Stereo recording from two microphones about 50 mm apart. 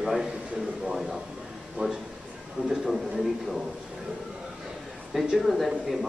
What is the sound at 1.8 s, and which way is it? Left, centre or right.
Speech, right.